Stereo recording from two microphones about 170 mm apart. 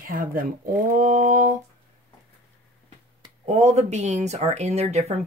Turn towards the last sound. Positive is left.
turn(degrees=-40)  # may be behind; listen again after turning